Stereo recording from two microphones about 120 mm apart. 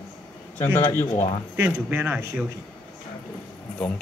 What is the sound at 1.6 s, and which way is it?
Speech, 15° right (ahead or behind).